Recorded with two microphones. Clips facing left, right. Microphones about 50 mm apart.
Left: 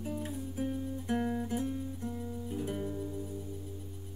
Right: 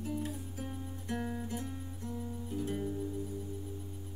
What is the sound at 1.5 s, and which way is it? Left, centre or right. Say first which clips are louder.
Guitar: left 6 dB; left.